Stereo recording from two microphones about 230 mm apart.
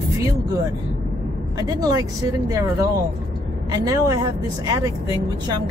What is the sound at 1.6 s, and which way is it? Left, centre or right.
Speech, centre.